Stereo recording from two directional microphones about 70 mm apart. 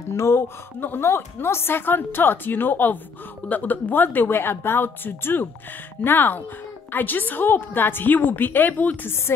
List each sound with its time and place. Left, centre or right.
0.1 s a woman's voice: left